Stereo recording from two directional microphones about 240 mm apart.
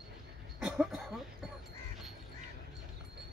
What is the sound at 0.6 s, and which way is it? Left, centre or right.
Cough, centre.